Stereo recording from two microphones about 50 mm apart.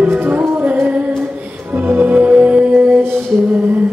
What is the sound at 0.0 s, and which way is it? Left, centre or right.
Music, right.